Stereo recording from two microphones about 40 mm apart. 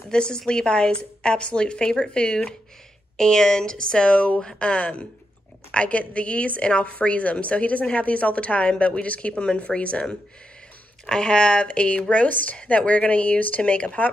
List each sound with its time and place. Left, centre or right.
0.1 s a woman's voice: left
11.1 s a woman's voice: centre; by 14.1 s left